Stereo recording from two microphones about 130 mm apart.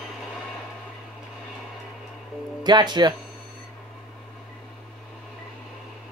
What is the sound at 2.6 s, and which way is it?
Speech, 35° right (ahead or behind).